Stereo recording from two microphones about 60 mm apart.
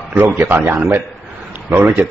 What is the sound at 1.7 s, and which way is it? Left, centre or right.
Speech, right.